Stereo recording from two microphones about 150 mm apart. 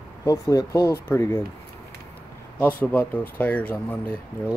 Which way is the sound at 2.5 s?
10° left (ahead or behind).